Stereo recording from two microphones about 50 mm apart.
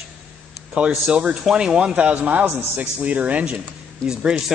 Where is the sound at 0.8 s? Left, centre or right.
Right.